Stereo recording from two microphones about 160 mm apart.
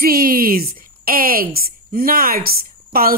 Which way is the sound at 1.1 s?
65° right (ahead or behind).